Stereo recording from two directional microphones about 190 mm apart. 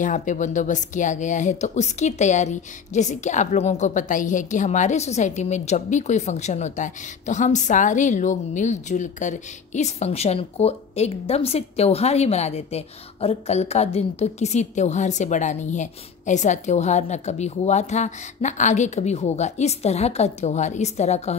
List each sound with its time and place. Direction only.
0.0 s speech: 40° left (ahead or behind)